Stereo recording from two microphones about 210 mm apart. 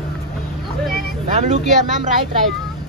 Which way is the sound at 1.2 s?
35° right (ahead or behind).